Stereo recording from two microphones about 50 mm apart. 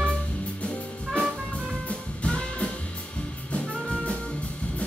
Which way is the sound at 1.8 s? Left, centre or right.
Left.